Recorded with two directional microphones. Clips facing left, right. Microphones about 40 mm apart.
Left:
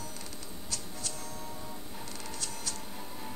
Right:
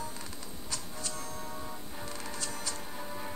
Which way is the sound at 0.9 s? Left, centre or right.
Centre.